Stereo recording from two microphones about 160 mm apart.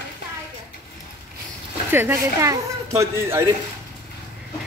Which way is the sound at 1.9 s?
15° right (ahead or behind).